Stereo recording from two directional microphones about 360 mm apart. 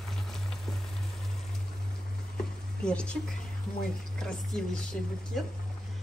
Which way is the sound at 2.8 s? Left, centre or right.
Centre.